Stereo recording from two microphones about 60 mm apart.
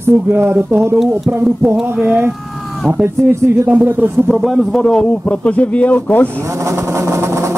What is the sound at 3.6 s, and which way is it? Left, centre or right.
Speech, right.